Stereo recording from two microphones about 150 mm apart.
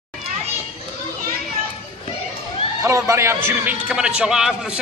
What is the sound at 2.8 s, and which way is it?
A man's voice, 20° right (ahead or behind).